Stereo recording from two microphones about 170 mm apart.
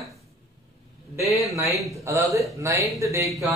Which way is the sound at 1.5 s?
20° right (ahead or behind).